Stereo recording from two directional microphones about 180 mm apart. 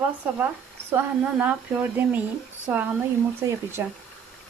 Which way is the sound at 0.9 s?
10° right (ahead or behind).